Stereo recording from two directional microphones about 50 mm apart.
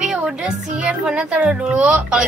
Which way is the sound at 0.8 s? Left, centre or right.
Right.